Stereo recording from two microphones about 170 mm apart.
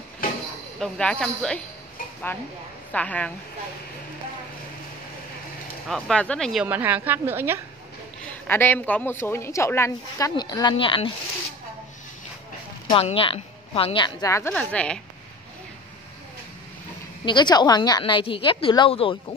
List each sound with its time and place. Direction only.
0.2 s a sound: 60° left (ahead or behind)
0.7 s speech: 5° left (ahead or behind)
2.9 s a woman's voice: 10° left (ahead or behind)
5.9 s speech: 5° left (ahead or behind)
6.6 s a woman's voice: 10° right (ahead or behind)
8.3 s a woman's voice: 10° left (ahead or behind); by 11.1 s 30° left (ahead or behind)
12.9 s a woman's voice: 35° left (ahead or behind); by 14.5 s 20° left (ahead or behind)
14.5 s a woman's voice: 5° left (ahead or behind)
17.2 s a woman's voice: 25° left (ahead or behind)